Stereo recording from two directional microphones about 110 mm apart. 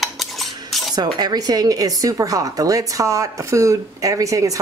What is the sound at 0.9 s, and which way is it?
Speech, 40° right (ahead or behind).